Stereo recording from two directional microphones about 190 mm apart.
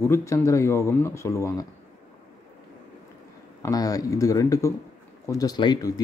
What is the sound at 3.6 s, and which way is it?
Speech, 20° left (ahead or behind).